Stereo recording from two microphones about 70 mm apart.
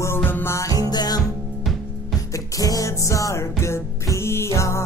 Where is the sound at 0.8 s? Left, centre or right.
Left.